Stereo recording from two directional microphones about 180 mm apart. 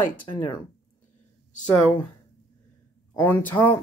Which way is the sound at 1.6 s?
5° left (ahead or behind).